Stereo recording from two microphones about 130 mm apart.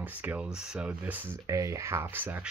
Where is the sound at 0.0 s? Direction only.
10° right (ahead or behind).